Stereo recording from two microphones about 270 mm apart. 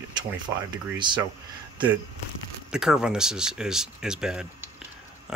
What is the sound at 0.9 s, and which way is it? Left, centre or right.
Speech, centre.